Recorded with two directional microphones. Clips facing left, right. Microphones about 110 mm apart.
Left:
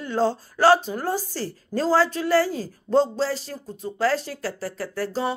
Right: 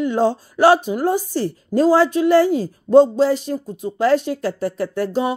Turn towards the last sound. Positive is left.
turn(degrees=-15)  # may be behind; listen again after turning